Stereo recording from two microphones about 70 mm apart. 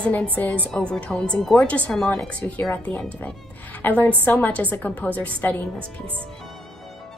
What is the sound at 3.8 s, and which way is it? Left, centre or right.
A woman's voice, left.